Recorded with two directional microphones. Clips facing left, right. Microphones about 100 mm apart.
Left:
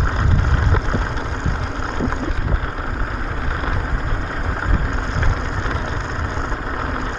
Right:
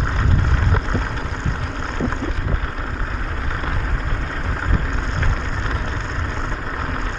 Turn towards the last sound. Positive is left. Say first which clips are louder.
# left 2 dB
turn(degrees=15)  # may be behind; listen again after turning